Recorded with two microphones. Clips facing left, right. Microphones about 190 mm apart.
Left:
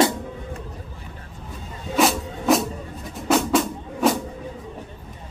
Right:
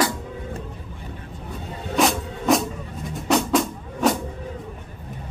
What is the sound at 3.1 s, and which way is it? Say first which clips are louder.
Drum: left 1 dB; centre (ahead or behind).